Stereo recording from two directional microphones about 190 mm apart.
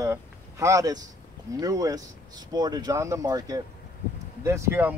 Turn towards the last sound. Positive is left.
turn(degrees=-10)  # may be behind; listen again after turning